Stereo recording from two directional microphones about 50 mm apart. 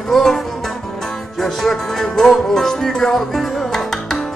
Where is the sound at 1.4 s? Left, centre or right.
Centre.